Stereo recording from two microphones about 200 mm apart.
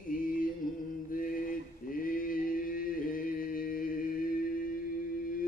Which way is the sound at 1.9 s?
45° left (ahead or behind).